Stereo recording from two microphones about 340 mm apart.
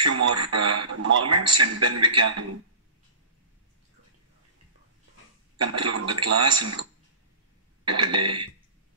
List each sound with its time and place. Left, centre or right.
0.0 s a man's voice: right
5.6 s a man's voice: right
7.9 s a man's voice: right